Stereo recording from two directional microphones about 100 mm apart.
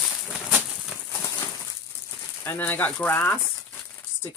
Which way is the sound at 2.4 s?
20° left (ahead or behind).